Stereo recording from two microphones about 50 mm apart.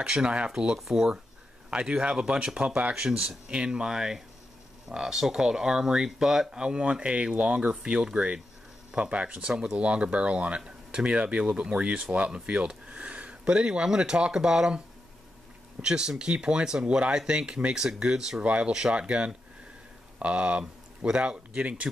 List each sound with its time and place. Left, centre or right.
0.2 s speech: centre
0.7 s speech: centre
1.7 s speech: centre
15.8 s speech: centre
18.4 s speech: right
18.7 s speech: centre